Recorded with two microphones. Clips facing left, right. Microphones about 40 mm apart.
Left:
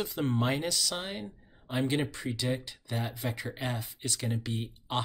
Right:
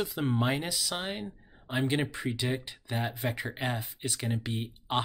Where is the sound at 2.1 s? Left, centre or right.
Right.